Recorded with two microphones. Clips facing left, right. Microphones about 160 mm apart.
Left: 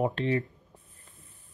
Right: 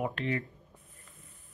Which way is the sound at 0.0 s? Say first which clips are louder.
Left 5 dB; 30° left (ahead or behind).